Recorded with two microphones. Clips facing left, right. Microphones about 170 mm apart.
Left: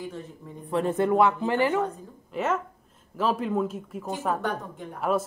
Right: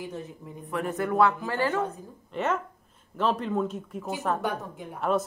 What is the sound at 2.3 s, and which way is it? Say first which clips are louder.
Speech: left 1 dB; 5° left (ahead or behind).